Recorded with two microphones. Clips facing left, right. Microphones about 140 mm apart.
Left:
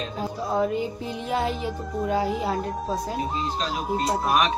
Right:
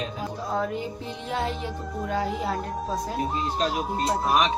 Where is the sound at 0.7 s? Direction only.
5° left (ahead or behind).